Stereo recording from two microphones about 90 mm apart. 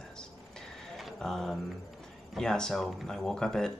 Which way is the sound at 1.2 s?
5° left (ahead or behind).